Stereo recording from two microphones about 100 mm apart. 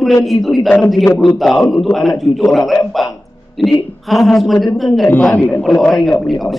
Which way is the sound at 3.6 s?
Centre (ahead or behind).